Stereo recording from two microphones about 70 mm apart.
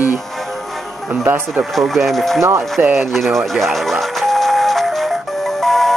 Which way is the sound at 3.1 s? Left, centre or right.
Centre.